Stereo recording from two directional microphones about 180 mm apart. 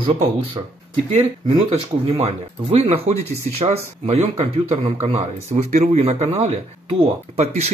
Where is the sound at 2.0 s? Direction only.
35° right (ahead or behind).